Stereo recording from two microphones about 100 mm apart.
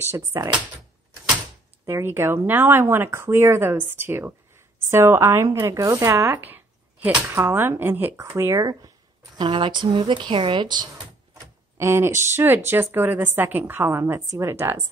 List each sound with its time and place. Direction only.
0.3 s speech: 35° right (ahead or behind)
1.9 s speech: 25° right (ahead or behind)
9.4 s speech: 55° right (ahead or behind)
11.8 s speech: 25° right (ahead or behind)